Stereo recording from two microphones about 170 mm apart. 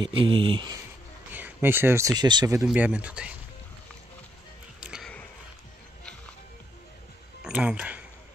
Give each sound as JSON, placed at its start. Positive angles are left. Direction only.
{"t": 0.0, "sound": "speech", "side_deg": -30}
{"t": 1.3, "sound": "speech", "side_deg": -10}
{"t": 2.6, "sound": "speech", "side_deg": -5}
{"t": 4.7, "sound": "music", "side_deg": -5}
{"t": 7.4, "sound": "speech", "side_deg": -5}